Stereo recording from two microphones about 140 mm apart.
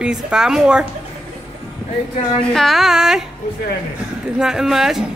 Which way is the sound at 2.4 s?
5° left (ahead or behind).